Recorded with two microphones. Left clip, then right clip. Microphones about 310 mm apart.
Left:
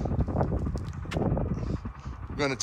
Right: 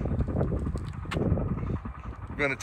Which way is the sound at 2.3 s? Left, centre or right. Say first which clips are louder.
Right 1 dB; centre.